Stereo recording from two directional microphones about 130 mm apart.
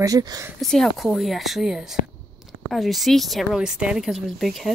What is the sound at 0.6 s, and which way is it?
Speech, 5° left (ahead or behind).